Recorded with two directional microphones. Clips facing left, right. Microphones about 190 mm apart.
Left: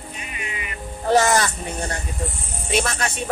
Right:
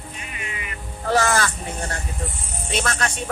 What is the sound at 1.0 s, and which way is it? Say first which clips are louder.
Speech: left 3 dB; 20° left (ahead or behind).